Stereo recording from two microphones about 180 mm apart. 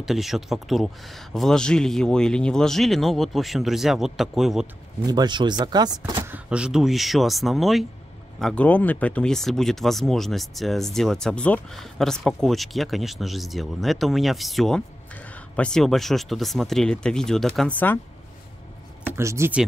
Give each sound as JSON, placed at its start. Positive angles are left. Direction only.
{"t": 0.0, "sound": "speech", "side_deg": 0}
{"t": 5.0, "sound": "speech", "side_deg": -25}
{"t": 6.3, "sound": "speech", "side_deg": -5}
{"t": 19.1, "sound": "speech", "side_deg": -15}